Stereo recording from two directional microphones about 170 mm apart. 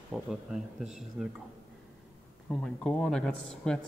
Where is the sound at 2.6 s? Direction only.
5° left (ahead or behind).